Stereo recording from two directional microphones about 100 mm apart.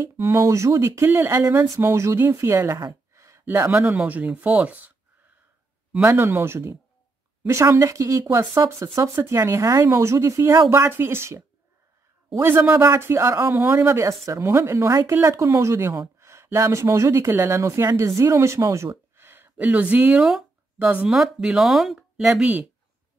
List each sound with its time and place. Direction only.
0.0 s speech: 25° right (ahead or behind)
2.9 s a sound: 30° right (ahead or behind)
3.4 s speech: 15° right (ahead or behind)
6.0 s speech: 25° right (ahead or behind)
19.1 s a sound: 20° right (ahead or behind); by 20.9 s 5° right (ahead or behind)
21.1 s speech: 5° right (ahead or behind)